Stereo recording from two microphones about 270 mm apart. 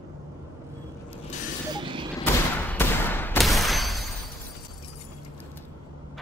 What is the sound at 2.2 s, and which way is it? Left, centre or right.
Fusillade, centre.